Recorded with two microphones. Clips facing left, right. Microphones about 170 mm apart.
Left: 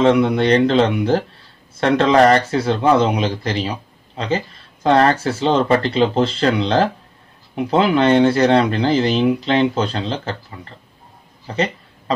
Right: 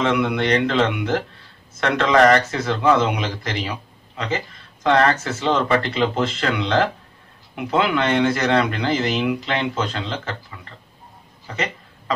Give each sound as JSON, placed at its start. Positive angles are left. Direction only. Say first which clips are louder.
{"t": 0.0, "sound": "speech", "louder": "left 6 dB", "side_deg": 35}